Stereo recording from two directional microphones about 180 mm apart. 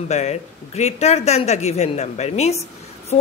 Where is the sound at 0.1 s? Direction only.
40° left (ahead or behind).